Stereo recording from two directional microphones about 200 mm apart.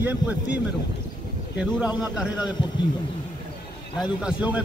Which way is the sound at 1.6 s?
5° right (ahead or behind).